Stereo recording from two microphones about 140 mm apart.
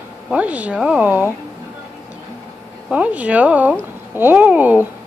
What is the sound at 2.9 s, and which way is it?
Speech, 10° right (ahead or behind).